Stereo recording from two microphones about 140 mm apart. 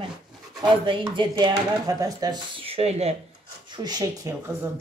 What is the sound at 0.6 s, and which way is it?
Speech, 35° right (ahead or behind).